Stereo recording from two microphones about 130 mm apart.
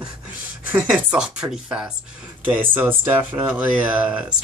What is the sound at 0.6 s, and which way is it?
Speech, 10° right (ahead or behind).